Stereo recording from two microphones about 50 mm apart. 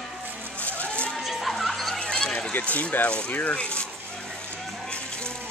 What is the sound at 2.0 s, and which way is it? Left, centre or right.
Run, centre.